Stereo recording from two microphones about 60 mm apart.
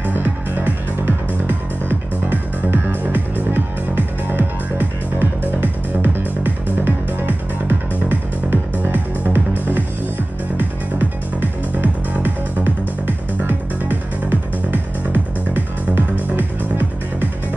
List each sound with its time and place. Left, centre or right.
0.0 s music: right
11.8 s music: right